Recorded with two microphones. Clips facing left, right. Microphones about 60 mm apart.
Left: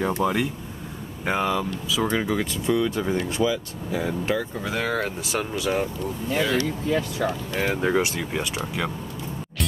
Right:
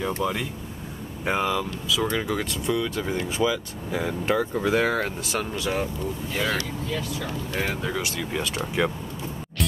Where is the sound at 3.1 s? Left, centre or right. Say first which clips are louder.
Left 3 dB; centre.